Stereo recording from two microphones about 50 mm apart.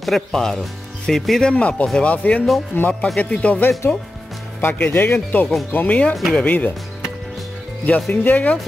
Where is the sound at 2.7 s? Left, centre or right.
Left.